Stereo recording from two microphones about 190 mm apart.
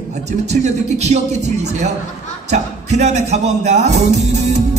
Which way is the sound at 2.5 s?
35° right (ahead or behind).